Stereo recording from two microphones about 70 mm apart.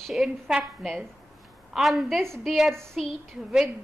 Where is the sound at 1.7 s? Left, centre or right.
Centre.